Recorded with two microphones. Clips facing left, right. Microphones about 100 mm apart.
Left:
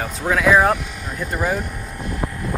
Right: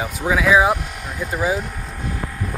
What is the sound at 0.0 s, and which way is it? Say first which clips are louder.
Speech: left 1 dB; 5° right (ahead or behind).